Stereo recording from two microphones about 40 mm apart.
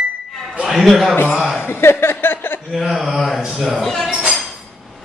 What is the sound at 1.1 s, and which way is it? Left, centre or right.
Speech, left.